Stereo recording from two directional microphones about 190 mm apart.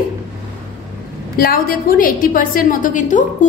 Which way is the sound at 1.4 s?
50° left (ahead or behind).